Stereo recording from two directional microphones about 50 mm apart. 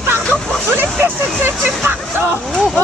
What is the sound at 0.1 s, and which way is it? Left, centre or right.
Hubbub, right.